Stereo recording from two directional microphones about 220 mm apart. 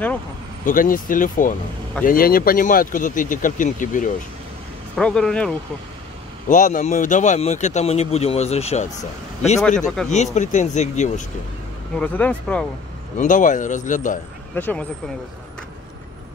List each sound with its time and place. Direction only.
0.7 s speech: 40° left (ahead or behind)
4.9 s speech: 5° left (ahead or behind)
6.5 s speech: 35° left (ahead or behind)
9.6 s speech: centre (ahead or behind)
10.0 s speech: 30° left (ahead or behind)
12.0 s speech: 5° left (ahead or behind)
13.2 s speech: 35° left (ahead or behind)
14.5 s speech: 10° left (ahead or behind)